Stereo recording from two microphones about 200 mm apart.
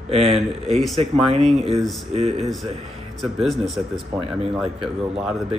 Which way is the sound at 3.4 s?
Centre (ahead or behind).